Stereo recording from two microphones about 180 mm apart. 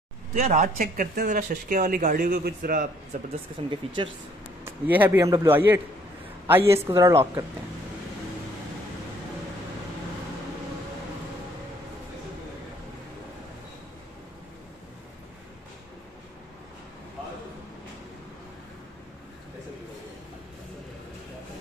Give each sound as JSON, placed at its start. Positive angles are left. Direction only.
{"t": 0.3, "sound": "speech", "side_deg": -40}
{"t": 3.8, "sound": "speech", "side_deg": -30}
{"t": 4.6, "sound": "a man's voice", "side_deg": -10}